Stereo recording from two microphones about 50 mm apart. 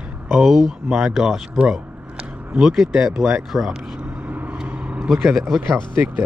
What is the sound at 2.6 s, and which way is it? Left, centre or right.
Speech, centre.